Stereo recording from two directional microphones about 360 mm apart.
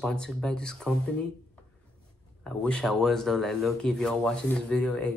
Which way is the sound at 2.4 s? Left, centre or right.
Centre.